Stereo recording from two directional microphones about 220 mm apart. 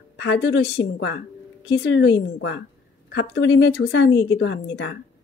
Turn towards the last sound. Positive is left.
turn(degrees=50)  # may be behind; listen again after turning